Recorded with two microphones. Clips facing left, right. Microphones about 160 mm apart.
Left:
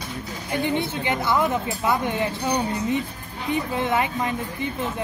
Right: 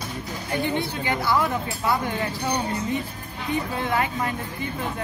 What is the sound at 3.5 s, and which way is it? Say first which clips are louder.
Speech: left 2 dB; 20° left (ahead or behind).